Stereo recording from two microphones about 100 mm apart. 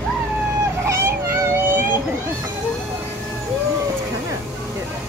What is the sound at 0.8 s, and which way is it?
Music, 30° right (ahead or behind).